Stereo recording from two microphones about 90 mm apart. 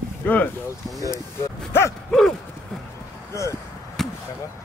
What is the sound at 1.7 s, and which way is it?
Dog, 30° left (ahead or behind).